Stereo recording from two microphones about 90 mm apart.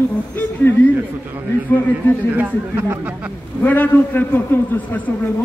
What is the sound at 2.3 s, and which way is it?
Speech, 25° right (ahead or behind).